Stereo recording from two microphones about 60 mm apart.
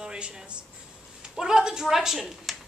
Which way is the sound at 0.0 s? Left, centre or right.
Centre.